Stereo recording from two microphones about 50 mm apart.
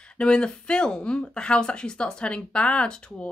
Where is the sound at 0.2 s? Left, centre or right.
Centre.